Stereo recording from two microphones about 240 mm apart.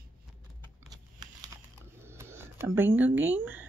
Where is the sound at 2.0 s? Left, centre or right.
Centre.